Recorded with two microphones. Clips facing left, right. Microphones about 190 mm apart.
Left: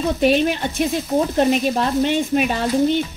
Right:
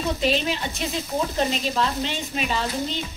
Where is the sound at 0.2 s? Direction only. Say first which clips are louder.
Left 9 dB; 55° left (ahead or behind).